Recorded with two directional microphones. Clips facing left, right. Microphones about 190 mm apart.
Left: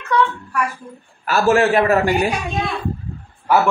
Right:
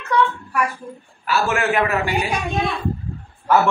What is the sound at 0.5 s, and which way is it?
Speech, 15° right (ahead or behind).